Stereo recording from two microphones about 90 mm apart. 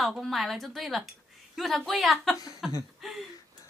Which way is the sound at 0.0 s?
Centre (ahead or behind).